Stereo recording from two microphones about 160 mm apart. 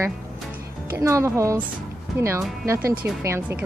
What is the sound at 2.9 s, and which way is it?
Speech, 10° right (ahead or behind).